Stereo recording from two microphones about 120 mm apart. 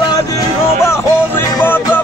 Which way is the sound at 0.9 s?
20° left (ahead or behind).